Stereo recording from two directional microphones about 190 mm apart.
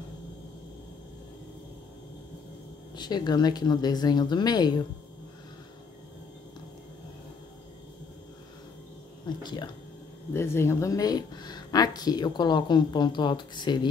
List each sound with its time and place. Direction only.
3.0 s speech: 20° left (ahead or behind)
9.4 s speech: 25° left (ahead or behind)
10.3 s speech: 15° left (ahead or behind)